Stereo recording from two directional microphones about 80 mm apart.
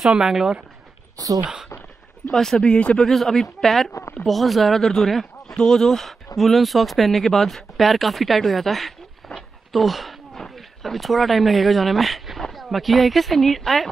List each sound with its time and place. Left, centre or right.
0.0 s speech: centre
1.1 s speech: right
1.4 s speech: centre
2.3 s speech: centre